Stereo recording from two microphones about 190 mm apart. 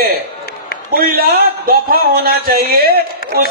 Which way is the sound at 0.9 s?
50° right (ahead or behind).